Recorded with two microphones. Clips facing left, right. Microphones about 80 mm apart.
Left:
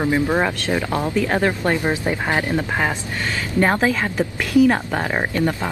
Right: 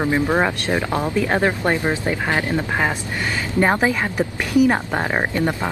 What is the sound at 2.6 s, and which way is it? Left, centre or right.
Speech, centre.